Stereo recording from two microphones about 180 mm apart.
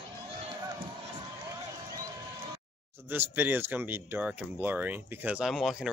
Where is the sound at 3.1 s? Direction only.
10° right (ahead or behind).